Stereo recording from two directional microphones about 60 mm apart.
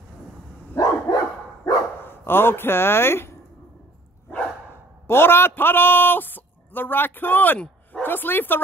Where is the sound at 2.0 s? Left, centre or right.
Left.